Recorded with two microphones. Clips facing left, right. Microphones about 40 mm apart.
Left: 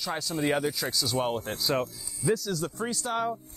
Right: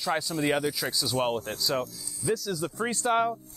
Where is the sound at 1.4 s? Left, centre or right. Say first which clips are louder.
Left 1 dB; centre.